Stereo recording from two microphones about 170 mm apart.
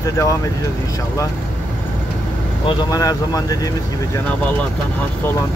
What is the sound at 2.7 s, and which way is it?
Speech, 25° left (ahead or behind).